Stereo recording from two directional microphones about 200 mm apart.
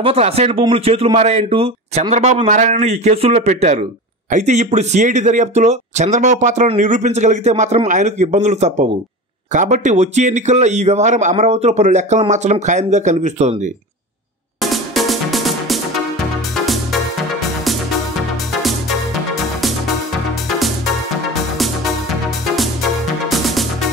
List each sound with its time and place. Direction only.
0.0 s speech: 30° right (ahead or behind)
14.6 s music: centre (ahead or behind)
18.6 s music: centre (ahead or behind)
20.5 s music: centre (ahead or behind)
23.2 s music: centre (ahead or behind)